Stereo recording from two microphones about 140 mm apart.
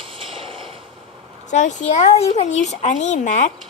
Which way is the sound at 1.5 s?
60° left (ahead or behind).